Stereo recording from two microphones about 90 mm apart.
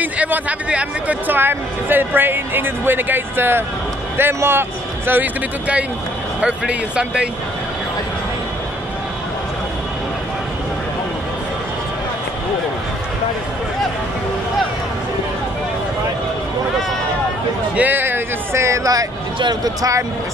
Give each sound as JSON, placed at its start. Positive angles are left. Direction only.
{"t": 0.0, "sound": "speech", "side_deg": -15}
{"t": 17.7, "sound": "speech", "side_deg": -20}
{"t": 19.3, "sound": "speech", "side_deg": -60}
{"t": 19.8, "sound": "speech", "side_deg": -35}